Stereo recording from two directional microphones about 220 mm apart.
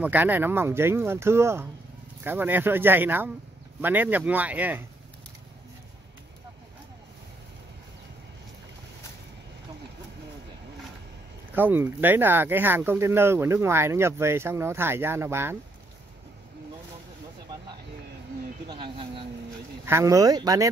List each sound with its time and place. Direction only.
0.0 s speech: 10° right (ahead or behind)
11.5 s speech: 10° right (ahead or behind)
18.7 s speech: 25° right (ahead or behind)